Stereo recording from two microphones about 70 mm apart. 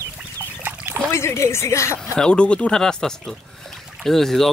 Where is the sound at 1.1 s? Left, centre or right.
Left.